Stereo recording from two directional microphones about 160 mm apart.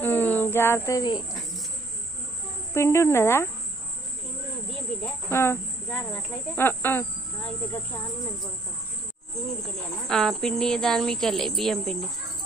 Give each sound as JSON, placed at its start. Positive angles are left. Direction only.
{"t": 0.0, "sound": "speech", "side_deg": 10}
{"t": 2.7, "sound": "speech", "side_deg": 15}
{"t": 5.0, "sound": "speech", "side_deg": 15}
{"t": 10.0, "sound": "speech", "side_deg": 5}